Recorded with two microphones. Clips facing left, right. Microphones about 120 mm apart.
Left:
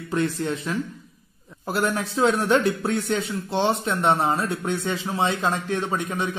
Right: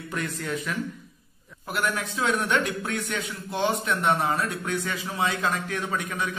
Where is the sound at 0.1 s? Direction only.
25° left (ahead or behind).